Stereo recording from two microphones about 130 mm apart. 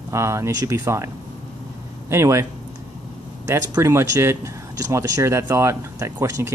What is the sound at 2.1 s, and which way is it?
Speech, 20° right (ahead or behind).